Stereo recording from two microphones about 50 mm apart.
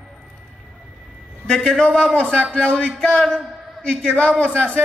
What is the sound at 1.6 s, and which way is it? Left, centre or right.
A man's voice, centre.